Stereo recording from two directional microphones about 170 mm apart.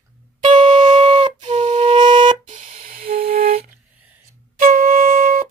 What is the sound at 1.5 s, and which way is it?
Flute, 40° right (ahead or behind).